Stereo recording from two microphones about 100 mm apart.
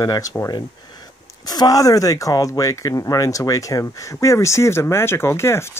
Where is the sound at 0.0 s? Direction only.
40° left (ahead or behind).